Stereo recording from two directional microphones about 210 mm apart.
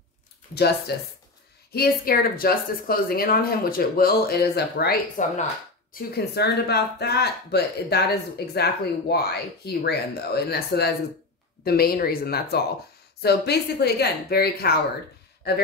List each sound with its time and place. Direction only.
0.6 s speech: 50° left (ahead or behind)